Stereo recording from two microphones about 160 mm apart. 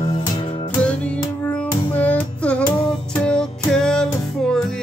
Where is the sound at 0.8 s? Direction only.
5° left (ahead or behind).